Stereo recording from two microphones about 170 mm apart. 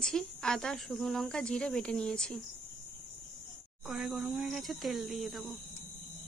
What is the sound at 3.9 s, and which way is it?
Speech, centre (ahead or behind).